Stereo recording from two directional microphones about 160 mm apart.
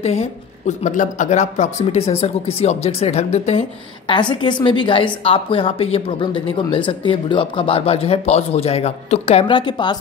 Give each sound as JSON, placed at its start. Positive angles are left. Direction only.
{"t": 0.0, "sound": "speech", "side_deg": 40}
{"t": 4.1, "sound": "speech", "side_deg": 30}